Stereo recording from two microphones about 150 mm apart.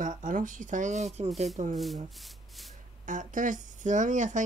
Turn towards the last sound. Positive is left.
turn(degrees=-55)  # may be behind; listen again after turning